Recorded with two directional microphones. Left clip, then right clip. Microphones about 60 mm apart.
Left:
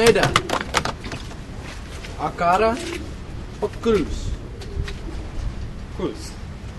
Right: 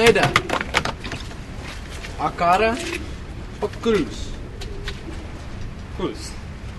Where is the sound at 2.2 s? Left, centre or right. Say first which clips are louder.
Right 1 dB; right.